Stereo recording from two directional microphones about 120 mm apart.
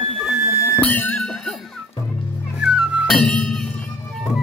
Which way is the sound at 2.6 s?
5° right (ahead or behind).